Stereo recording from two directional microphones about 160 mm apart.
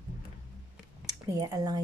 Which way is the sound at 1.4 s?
25° right (ahead or behind).